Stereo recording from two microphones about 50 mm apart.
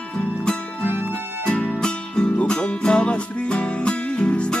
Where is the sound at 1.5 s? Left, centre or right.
Centre.